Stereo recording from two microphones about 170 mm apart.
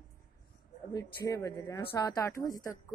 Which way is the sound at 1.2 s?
20° left (ahead or behind).